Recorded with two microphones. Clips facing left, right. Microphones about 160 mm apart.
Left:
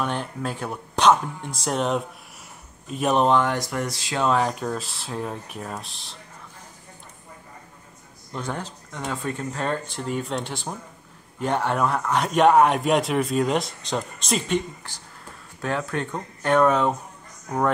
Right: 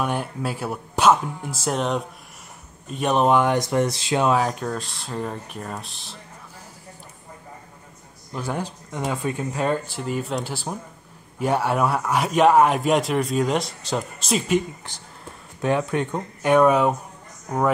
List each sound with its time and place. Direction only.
0.0 s speech: 10° right (ahead or behind)
3.3 s speech: 15° right (ahead or behind)
4.3 s speech: centre (ahead or behind)
8.3 s speech: 5° right (ahead or behind)
14.9 s speech: 20° right (ahead or behind)